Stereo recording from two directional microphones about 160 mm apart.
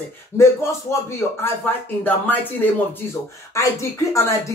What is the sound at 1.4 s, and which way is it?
Speech, 10° left (ahead or behind).